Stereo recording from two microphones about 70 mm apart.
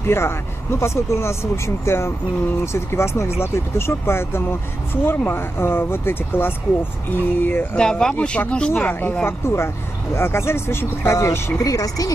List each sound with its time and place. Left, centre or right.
0.0 s speech: left
7.7 s speech: centre
8.7 s speech: left
11.6 s speech: left